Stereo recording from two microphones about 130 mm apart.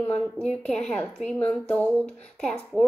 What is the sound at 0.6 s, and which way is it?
Speech, 5° left (ahead or behind).